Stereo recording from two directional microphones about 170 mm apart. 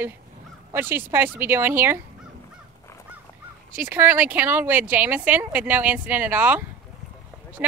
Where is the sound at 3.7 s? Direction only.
10° right (ahead or behind).